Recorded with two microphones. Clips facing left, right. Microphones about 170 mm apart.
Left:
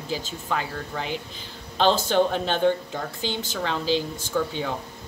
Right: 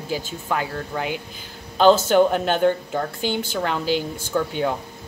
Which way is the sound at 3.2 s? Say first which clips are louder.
Right 2 dB; 15° right (ahead or behind).